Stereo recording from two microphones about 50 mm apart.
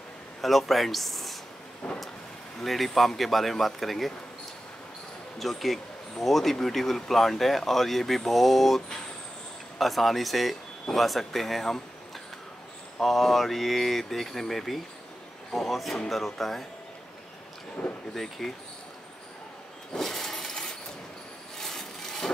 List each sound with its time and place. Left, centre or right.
0.4 s speech: centre
1.8 s vehicle: centre
2.6 s speech: centre
5.4 s speech: centre
13.0 s speech: centre
17.8 s speech: left
18.1 s speech: centre
19.9 s a sound: centre
21.5 s rub: centre